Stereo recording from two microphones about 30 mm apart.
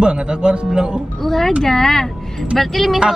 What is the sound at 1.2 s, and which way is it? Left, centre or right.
Speech, centre.